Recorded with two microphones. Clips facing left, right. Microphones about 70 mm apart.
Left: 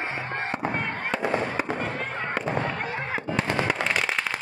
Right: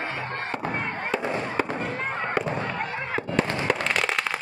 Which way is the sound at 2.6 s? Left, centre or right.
Centre.